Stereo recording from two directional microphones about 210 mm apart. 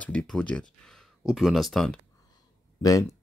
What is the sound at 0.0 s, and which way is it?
Speech, 5° left (ahead or behind).